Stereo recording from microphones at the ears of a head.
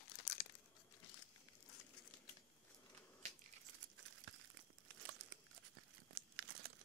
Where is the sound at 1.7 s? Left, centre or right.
Left.